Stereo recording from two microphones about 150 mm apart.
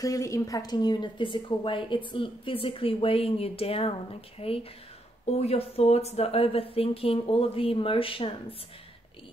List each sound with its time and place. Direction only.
0.0 s speech: 20° left (ahead or behind); by 8.5 s 35° left (ahead or behind)